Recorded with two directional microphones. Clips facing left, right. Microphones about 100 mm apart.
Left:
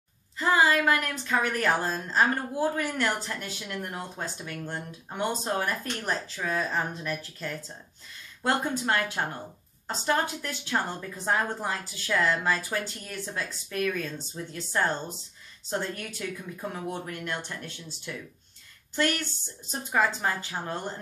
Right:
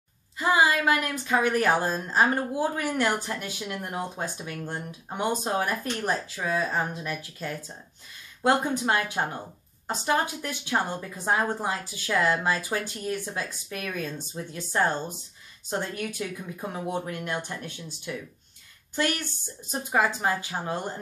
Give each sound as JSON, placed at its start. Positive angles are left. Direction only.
{"t": 0.4, "sound": "speech", "side_deg": -15}